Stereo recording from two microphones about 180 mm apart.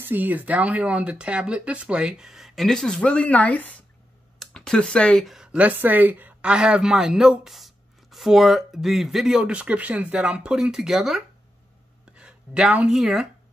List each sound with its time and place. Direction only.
0.0 s speech: 10° right (ahead or behind)